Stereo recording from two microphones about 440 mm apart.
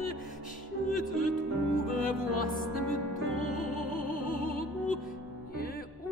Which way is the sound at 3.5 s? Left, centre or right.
Centre.